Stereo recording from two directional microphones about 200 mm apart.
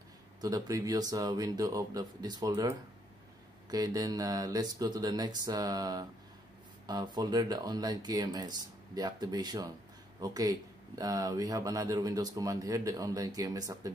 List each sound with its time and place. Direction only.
0.4 s speech: 15° right (ahead or behind)
3.7 s speech: 20° right (ahead or behind)